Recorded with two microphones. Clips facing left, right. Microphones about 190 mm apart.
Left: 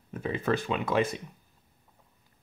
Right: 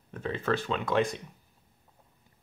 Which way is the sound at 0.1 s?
10° left (ahead or behind).